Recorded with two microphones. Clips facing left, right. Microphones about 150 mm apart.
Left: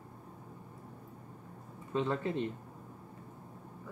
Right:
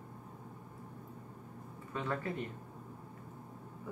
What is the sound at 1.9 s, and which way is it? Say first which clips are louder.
Speech: left 5 dB; 25° left (ahead or behind).